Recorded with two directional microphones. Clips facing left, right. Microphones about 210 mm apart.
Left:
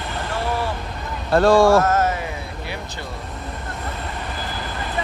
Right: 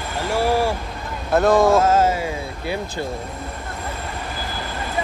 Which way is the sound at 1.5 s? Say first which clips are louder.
Left 1 dB; 20° right (ahead or behind).